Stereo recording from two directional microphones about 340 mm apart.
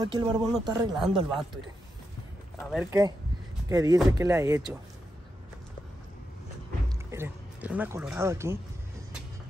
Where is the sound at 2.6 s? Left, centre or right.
Centre.